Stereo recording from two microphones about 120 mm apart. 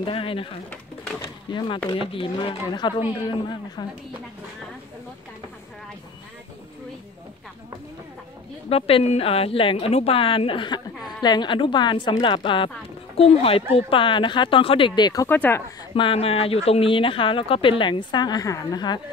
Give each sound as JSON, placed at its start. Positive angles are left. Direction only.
{"t": 0.0, "sound": "speech", "side_deg": 45}
{"t": 2.0, "sound": "speech", "side_deg": 45}
{"t": 8.6, "sound": "speech", "side_deg": 55}
{"t": 15.2, "sound": "speech", "side_deg": 15}
{"t": 15.9, "sound": "speech", "side_deg": 50}